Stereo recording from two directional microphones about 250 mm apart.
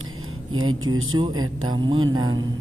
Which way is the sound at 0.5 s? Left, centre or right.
Right.